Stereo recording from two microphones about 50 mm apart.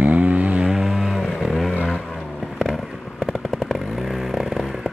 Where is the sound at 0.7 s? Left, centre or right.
Centre.